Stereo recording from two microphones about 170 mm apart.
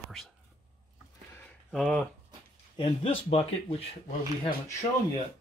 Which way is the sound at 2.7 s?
35° left (ahead or behind).